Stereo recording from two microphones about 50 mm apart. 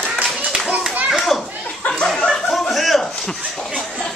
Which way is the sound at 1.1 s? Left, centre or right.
Centre.